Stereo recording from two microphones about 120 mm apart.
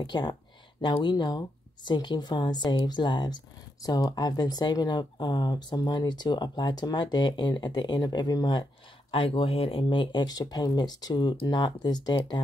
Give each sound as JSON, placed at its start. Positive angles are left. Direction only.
{"t": 0.0, "sound": "speech", "side_deg": 35}
{"t": 9.1, "sound": "speech", "side_deg": 50}